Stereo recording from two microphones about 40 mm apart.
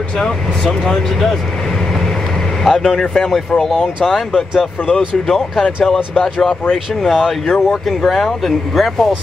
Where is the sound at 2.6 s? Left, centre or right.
Centre.